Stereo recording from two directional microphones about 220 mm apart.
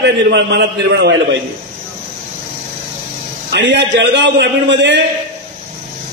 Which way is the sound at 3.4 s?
50° right (ahead or behind).